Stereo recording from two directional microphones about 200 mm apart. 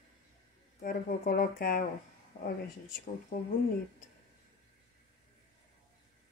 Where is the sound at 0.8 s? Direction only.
45° left (ahead or behind).